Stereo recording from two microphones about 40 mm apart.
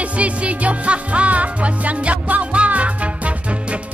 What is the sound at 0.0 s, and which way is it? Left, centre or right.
Music, right.